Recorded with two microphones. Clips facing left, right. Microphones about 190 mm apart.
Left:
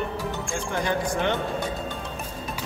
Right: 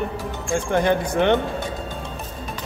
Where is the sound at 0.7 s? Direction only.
60° right (ahead or behind).